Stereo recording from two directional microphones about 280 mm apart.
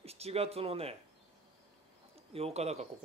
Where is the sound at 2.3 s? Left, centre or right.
Right.